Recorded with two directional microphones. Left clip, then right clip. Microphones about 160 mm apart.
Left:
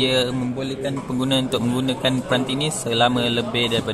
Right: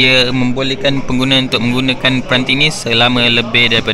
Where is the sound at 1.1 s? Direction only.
Centre (ahead or behind).